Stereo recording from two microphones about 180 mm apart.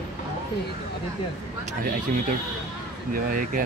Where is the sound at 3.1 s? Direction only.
50° right (ahead or behind).